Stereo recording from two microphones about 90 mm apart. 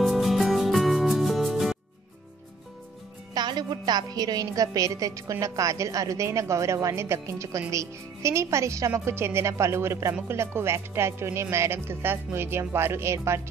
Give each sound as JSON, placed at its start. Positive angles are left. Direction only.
{"t": 0.0, "sound": "music", "side_deg": 0}
{"t": 3.3, "sound": "a woman's voice", "side_deg": -55}